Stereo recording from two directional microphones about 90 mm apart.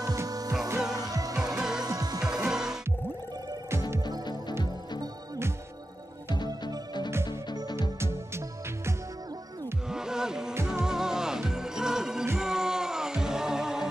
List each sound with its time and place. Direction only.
0.0 s music: 40° right (ahead or behind)
1.3 s music: 5° right (ahead or behind)
1.9 s music: 40° right (ahead or behind)
2.2 s music: 10° right (ahead or behind)
6.3 s music: 55° left (ahead or behind)
9.8 s music: 5° right (ahead or behind)